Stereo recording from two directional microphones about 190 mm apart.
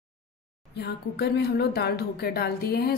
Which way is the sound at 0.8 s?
60° left (ahead or behind).